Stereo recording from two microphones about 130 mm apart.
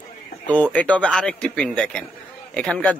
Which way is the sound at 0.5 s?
10° left (ahead or behind).